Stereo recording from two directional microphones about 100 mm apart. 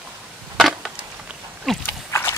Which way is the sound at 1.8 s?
25° left (ahead or behind).